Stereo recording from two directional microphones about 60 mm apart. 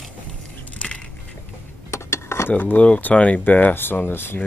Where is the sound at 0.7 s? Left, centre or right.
Left.